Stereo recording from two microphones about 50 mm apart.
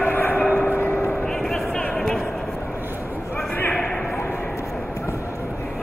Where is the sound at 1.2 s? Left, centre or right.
Centre.